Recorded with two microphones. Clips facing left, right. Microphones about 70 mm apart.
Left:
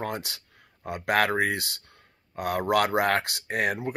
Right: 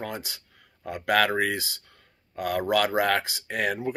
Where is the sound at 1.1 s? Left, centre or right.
Left.